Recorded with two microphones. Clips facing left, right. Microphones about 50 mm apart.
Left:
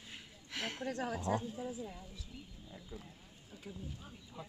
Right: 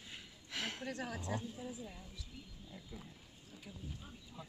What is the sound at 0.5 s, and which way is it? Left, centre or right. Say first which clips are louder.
Speech: left 2 dB; left.